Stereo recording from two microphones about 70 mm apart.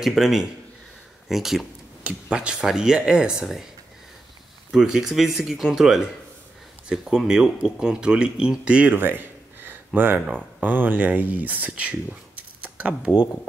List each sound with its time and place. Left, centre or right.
0.0 s speech: centre
2.0 s speech: centre
4.6 s speech: centre
9.0 s a sound: right
10.6 s speech: right